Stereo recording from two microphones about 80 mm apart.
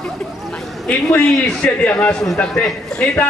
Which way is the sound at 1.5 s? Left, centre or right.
Centre.